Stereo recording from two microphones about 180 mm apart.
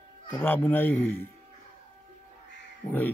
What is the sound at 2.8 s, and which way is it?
Speech, 20° left (ahead or behind).